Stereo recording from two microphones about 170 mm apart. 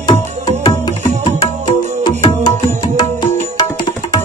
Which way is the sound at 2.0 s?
25° left (ahead or behind).